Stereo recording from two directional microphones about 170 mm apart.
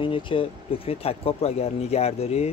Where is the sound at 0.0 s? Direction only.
30° left (ahead or behind).